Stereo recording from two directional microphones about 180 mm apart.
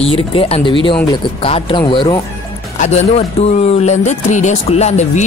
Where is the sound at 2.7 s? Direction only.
40° left (ahead or behind).